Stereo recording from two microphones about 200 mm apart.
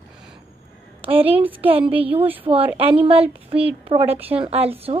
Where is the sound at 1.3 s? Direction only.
10° right (ahead or behind).